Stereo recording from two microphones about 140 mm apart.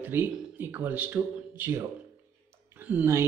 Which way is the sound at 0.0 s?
15° right (ahead or behind).